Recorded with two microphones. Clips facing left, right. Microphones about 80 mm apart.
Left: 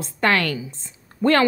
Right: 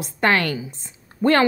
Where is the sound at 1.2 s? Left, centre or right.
Centre.